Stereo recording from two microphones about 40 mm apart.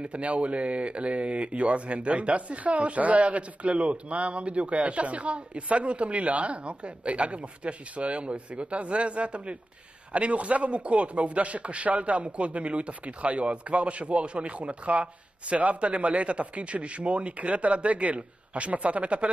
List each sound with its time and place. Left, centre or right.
0.0 s speech: right